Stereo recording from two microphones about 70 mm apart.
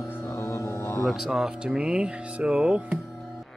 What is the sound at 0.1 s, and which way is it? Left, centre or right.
Music, left.